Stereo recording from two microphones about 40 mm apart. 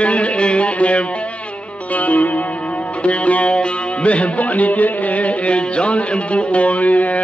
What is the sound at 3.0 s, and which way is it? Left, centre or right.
Music, left.